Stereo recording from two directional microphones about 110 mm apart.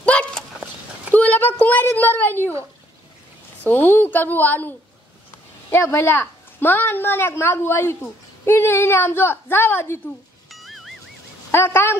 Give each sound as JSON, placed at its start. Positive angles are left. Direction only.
{"t": 0.0, "sound": "a sound", "side_deg": 15}
{"t": 3.6, "sound": "a woman's voice", "side_deg": 20}
{"t": 10.5, "sound": "music", "side_deg": 0}
{"t": 11.5, "sound": "a woman's voice", "side_deg": 20}